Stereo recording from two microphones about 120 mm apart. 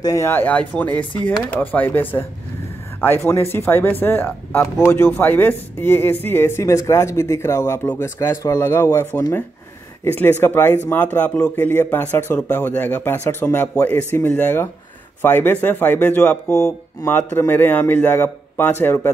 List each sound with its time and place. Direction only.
0.0 s speech: 25° left (ahead or behind)